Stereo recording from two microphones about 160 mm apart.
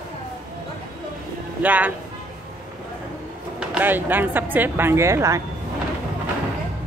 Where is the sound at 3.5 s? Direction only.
10° right (ahead or behind).